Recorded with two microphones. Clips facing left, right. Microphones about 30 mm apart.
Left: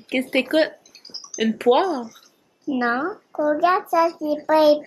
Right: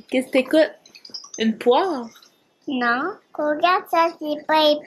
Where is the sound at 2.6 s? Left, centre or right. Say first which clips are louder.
Right 1 dB; right.